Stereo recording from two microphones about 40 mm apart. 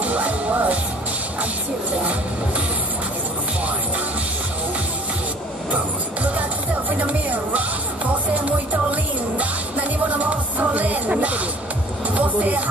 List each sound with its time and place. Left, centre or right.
0.0 s music: right
7.0 s music: right